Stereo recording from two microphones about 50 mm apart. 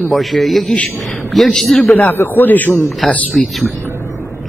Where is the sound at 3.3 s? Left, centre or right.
Centre.